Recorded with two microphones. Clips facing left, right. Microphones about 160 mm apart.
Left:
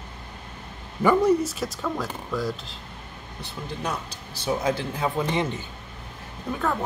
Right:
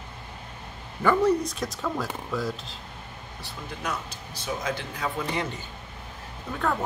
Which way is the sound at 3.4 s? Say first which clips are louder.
Left 3 dB; 30° left (ahead or behind).